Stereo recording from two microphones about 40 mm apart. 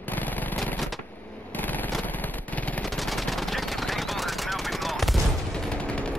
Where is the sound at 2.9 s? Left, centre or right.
Centre.